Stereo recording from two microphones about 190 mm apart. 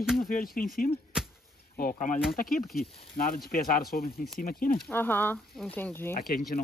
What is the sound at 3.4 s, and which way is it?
Speech, 50° left (ahead or behind).